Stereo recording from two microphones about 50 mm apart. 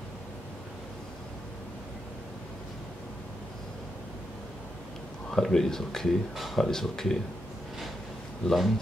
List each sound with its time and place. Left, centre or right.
5.3 s speech: centre
8.5 s speech: centre